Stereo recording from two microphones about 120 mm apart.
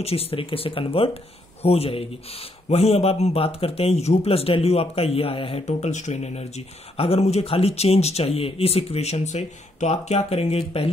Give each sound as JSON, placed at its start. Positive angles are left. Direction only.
{"t": 0.0, "sound": "speech", "side_deg": 55}
{"t": 5.7, "sound": "speech", "side_deg": 75}